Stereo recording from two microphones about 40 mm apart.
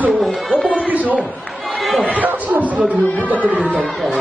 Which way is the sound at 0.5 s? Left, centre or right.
Right.